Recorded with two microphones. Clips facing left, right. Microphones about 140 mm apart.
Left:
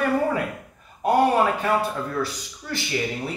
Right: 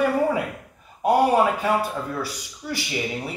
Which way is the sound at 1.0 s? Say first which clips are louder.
Right 1 dB; 10° right (ahead or behind).